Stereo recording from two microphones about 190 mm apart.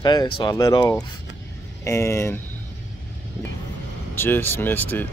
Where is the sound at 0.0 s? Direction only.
20° left (ahead or behind).